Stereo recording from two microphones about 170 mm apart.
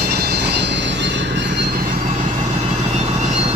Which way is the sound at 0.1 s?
70° right (ahead or behind).